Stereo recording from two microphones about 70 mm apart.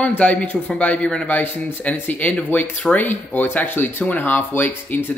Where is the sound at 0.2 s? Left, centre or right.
Left.